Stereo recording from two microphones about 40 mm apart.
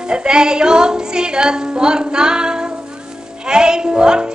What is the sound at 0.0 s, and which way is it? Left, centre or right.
Music, right.